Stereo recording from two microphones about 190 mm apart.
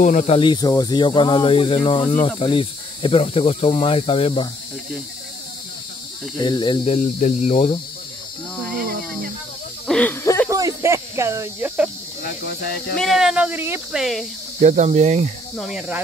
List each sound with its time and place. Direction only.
0.0 s speech: 40° left (ahead or behind)
0.4 s speech: 20° left (ahead or behind)
6.3 s speech: 25° left (ahead or behind)
7.2 s speech: 40° left (ahead or behind)
8.6 s a sound: 50° right (ahead or behind)
9.8 s snake: 10° left (ahead or behind)
10.5 s cricket: 15° right (ahead or behind)
12.9 s speech: centre (ahead or behind)
14.6 s speech: 40° right (ahead or behind)
15.5 s speech: centre (ahead or behind)